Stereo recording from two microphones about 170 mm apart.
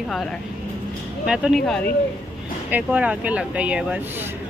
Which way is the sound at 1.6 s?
5° left (ahead or behind).